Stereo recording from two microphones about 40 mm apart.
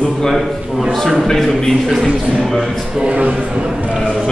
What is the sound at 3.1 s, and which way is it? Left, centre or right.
Speech, right.